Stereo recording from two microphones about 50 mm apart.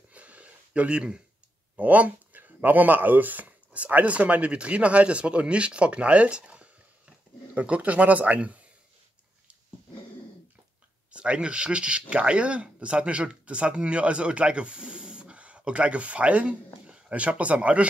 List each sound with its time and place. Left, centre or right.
0.1 s a sound: right
1.8 s speech: right
11.1 s speech: right